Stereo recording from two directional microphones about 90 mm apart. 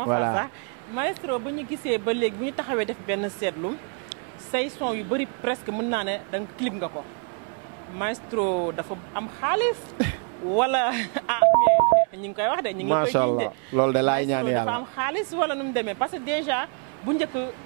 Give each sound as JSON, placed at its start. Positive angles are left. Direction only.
{"t": 0.0, "sound": "speech", "side_deg": -20}
{"t": 8.0, "sound": "speech", "side_deg": -20}